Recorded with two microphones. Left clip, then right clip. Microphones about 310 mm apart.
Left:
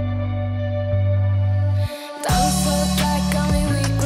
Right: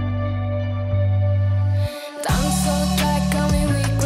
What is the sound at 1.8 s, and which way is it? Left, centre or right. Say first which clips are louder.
Music: right 4 dB; centre.